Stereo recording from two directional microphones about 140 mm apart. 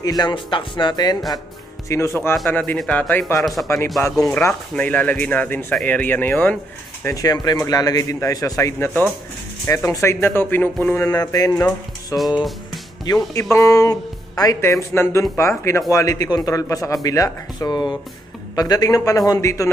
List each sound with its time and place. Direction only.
0.0 s speech: 30° left (ahead or behind)
1.9 s speech: 20° left (ahead or behind)
2.5 s speech: 5° left (ahead or behind)
7.1 s speech: 25° left (ahead or behind)
11.1 s speech: 25° left (ahead or behind)
12.4 s music: centre (ahead or behind)
13.0 s speech: 25° left (ahead or behind)